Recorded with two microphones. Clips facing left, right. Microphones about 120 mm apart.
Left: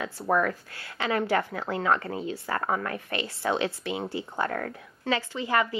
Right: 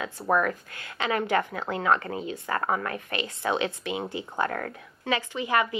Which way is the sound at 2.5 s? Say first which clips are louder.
Right 1 dB; 30° right (ahead or behind).